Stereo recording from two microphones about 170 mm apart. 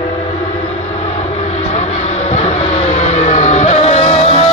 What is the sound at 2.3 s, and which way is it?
Vehicle, 40° left (ahead or behind).